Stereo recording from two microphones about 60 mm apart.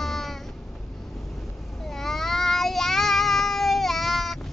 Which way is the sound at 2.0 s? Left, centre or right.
Centre.